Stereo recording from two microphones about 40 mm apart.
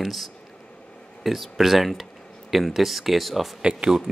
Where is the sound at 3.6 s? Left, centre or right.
Right.